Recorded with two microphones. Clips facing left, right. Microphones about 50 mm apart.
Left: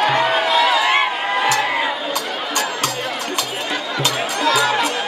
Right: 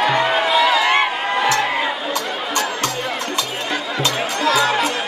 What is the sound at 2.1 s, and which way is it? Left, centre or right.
Chatter, right.